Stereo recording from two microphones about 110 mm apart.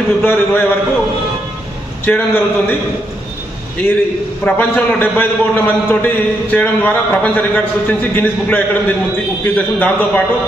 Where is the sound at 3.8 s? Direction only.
20° left (ahead or behind).